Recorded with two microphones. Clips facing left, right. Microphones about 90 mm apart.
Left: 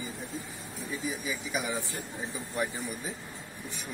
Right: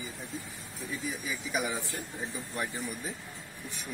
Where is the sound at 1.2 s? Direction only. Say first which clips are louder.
Even; centre (ahead or behind).